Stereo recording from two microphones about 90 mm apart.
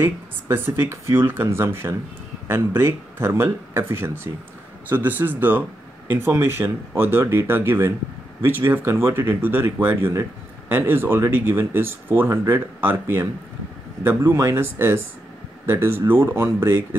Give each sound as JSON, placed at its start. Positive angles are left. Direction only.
{"t": 0.0, "sound": "speech", "side_deg": -25}